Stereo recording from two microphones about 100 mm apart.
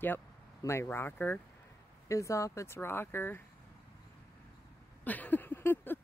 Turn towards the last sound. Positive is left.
turn(degrees=20)  # may be behind; listen again after turning